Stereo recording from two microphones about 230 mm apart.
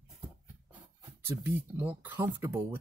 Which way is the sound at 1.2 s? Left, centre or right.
Centre.